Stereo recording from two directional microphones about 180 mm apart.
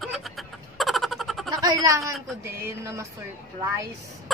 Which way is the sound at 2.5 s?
15° right (ahead or behind).